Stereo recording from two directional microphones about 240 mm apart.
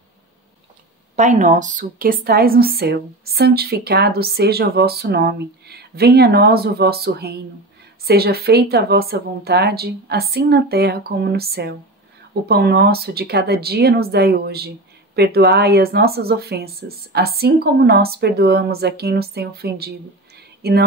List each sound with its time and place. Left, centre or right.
1.1 s a woman's voice: right